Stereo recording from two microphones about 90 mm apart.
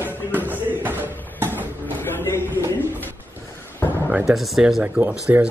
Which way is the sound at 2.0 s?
25° left (ahead or behind).